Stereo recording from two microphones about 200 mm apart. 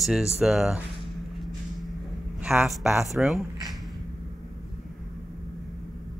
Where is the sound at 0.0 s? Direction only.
5° right (ahead or behind).